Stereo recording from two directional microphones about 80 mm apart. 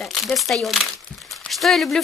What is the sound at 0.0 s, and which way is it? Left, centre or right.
Speech, centre.